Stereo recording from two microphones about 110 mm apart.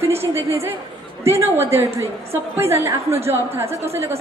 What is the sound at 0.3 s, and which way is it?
A woman's voice, 25° right (ahead or behind).